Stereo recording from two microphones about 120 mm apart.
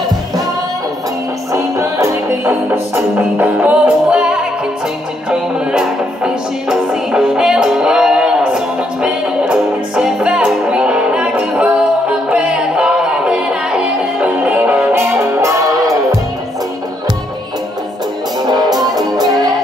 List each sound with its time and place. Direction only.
1.5 s music: 25° right (ahead or behind)
19.1 s music: 35° right (ahead or behind)